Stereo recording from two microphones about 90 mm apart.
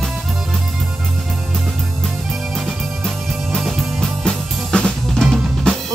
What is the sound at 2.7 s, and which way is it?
Music, centre (ahead or behind).